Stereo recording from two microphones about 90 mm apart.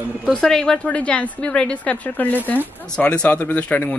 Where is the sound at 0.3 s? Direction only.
5° left (ahead or behind).